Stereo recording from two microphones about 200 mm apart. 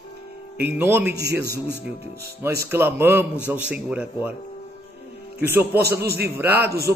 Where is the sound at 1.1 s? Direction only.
55° right (ahead or behind).